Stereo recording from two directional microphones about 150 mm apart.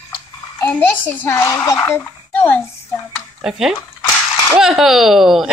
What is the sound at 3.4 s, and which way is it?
A woman's voice, 5° right (ahead or behind).